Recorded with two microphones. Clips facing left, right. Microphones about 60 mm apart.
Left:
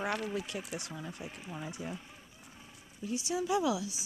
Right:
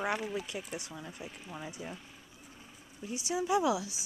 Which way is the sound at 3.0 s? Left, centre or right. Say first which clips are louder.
Left 3 dB; centre.